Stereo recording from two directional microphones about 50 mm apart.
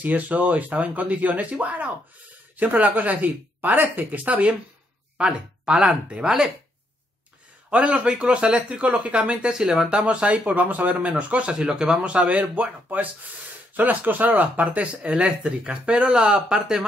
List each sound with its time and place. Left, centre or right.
0.0 s speech: right
5.1 s speech: centre
7.7 s speech: right
9.9 s speech: right